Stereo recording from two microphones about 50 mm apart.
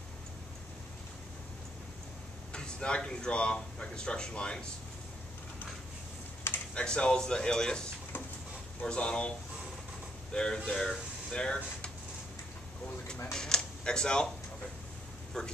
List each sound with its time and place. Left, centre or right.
2.5 s a man's voice: centre
6.7 s speech: left
8.8 s a man's voice: left
10.3 s speech: centre
13.3 s speech: centre
15.3 s speech: centre